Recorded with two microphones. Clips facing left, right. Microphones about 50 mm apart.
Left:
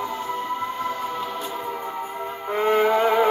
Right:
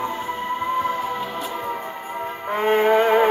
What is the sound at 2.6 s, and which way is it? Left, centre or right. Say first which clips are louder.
Music: right 1 dB; right.